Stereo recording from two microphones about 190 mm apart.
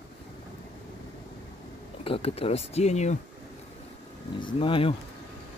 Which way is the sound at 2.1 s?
30° left (ahead or behind).